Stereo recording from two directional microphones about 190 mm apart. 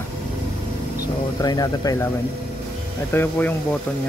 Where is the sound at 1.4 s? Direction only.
20° left (ahead or behind).